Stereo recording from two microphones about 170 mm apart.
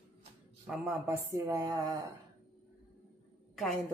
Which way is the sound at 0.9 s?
15° right (ahead or behind).